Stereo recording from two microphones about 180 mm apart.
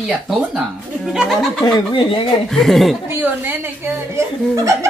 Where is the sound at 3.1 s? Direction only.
10° right (ahead or behind).